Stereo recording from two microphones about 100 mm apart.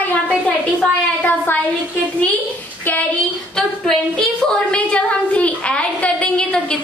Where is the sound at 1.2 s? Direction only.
20° left (ahead or behind).